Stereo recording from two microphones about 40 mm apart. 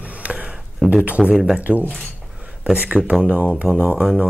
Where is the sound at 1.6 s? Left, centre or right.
Right.